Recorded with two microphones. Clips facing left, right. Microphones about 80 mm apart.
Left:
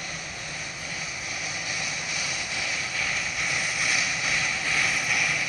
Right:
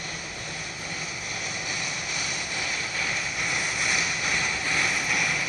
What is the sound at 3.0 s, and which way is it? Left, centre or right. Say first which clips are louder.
Vehicle: even; centre.